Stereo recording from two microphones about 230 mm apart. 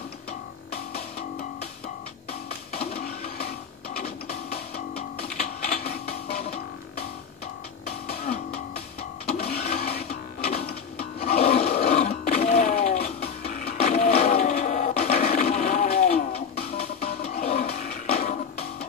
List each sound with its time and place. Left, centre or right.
0.9 s music: left
2.7 s music: left
4.0 s music: left
5.4 s printer: left
9.2 s printer: left
11.0 s grunt: left
13.7 s a sound: left